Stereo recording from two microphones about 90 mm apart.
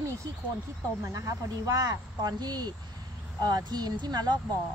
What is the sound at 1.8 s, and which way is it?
Speech, 45° right (ahead or behind).